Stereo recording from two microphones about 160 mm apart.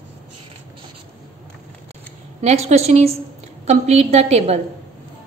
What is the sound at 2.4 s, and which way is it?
A woman's voice, 45° right (ahead or behind).